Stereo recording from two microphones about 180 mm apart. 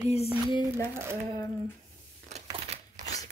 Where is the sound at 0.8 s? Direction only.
15° right (ahead or behind).